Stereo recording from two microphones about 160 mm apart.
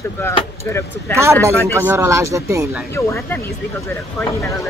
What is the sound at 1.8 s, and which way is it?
Speech, 15° right (ahead or behind).